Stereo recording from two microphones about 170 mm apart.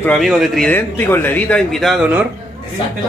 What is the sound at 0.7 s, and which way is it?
Speech, 10° left (ahead or behind).